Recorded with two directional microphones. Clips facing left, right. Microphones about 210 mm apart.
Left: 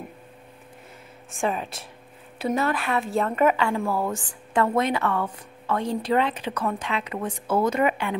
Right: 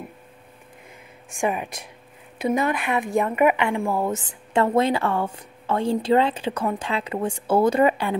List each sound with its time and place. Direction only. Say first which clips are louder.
1.3 s a woman's voice: right 2 dB; 15° right (ahead or behind); by 8.2 s 35° right (ahead or behind)